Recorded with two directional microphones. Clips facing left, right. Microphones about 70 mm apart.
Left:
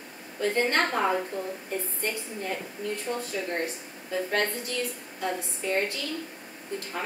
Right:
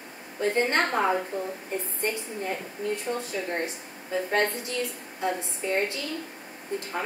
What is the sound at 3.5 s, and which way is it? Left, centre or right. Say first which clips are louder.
A woman's voice: even; right.